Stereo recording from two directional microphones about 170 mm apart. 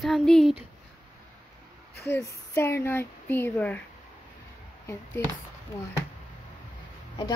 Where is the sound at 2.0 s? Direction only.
15° left (ahead or behind).